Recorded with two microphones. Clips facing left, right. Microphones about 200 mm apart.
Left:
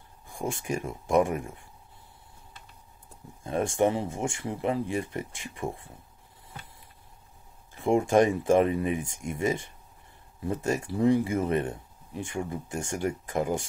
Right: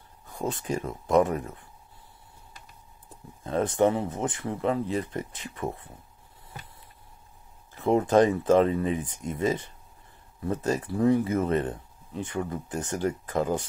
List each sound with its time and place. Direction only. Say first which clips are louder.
0.3 s speech: right 1 dB; 10° left (ahead or behind)
3.4 s speech: right 2 dB; 10° left (ahead or behind)
8.1 s speech: right 2 dB; 15° left (ahead or behind)
12.4 s speech: right 2 dB; 25° left (ahead or behind)
12.7 s speech: right 2 dB; 10° left (ahead or behind)